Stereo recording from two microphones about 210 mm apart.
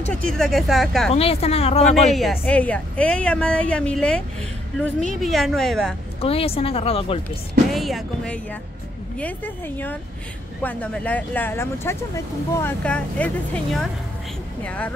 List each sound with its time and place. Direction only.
0.3 s a woman's voice: centre (ahead or behind)
1.1 s a woman's voice: 30° left (ahead or behind)
2.0 s a woman's voice: centre (ahead or behind)
6.2 s a woman's voice: 25° left (ahead or behind)
7.7 s a woman's voice: centre (ahead or behind)